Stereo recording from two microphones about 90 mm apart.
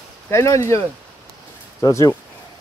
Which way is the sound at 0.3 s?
35° left (ahead or behind).